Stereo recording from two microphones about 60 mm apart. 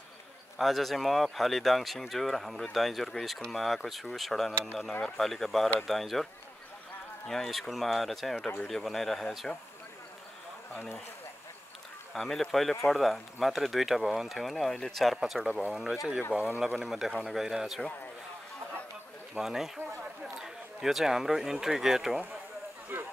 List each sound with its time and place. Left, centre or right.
0.6 s speech: centre
7.2 s speech: centre
12.1 s speech: centre
15.1 s speech: centre
19.3 s speech: centre
22.9 s a sound: right